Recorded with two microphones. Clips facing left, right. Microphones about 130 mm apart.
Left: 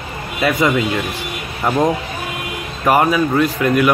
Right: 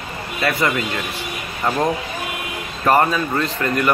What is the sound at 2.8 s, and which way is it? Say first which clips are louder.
A man's voice: left 2 dB; 10° left (ahead or behind).